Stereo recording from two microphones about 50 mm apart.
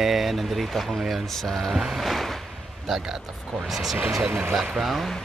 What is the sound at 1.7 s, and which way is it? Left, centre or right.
Speech, centre.